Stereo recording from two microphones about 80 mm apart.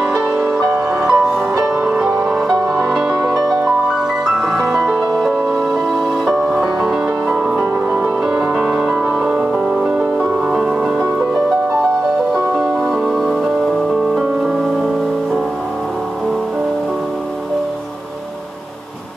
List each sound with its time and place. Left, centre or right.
0.0 s music: centre
4.6 s music: right
5.2 s music: centre
8.3 s music: centre